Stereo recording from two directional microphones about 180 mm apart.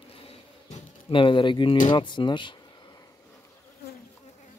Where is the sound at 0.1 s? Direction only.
30° left (ahead or behind).